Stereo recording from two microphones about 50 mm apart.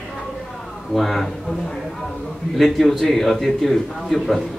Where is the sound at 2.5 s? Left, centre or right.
Centre.